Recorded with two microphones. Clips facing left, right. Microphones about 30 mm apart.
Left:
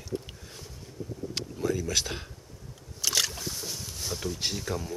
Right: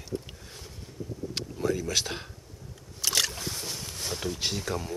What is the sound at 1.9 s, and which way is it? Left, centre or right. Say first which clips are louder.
Speech: right 1 dB; centre.